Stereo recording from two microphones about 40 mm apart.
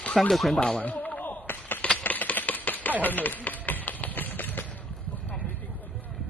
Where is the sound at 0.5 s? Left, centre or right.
Left.